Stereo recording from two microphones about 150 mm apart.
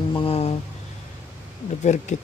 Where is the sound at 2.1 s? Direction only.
50° left (ahead or behind).